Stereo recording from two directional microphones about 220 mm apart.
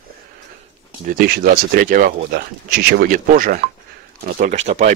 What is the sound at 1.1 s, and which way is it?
Speech, 45° right (ahead or behind).